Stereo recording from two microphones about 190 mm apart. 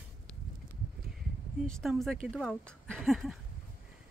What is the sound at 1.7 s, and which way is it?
Speech, centre (ahead or behind).